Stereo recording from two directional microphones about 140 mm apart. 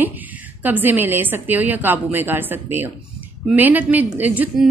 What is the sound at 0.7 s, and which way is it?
A woman's voice, 15° right (ahead or behind).